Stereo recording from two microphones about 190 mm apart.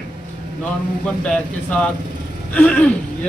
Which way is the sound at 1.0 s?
5° left (ahead or behind).